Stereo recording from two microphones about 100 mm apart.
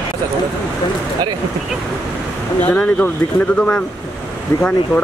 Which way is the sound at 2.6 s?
15° left (ahead or behind).